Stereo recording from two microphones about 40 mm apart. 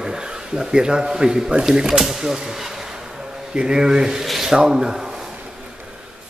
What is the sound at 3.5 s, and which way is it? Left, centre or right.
Speech, centre.